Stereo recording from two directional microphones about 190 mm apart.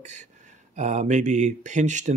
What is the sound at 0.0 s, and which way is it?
Speech, 40° right (ahead or behind).